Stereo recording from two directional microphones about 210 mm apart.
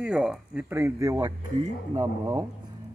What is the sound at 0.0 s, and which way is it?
A woman's voice, 5° right (ahead or behind).